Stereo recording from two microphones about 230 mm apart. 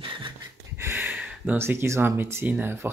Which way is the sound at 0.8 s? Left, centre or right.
Centre.